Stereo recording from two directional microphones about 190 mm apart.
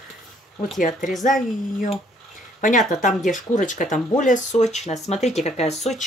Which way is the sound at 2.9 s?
40° left (ahead or behind).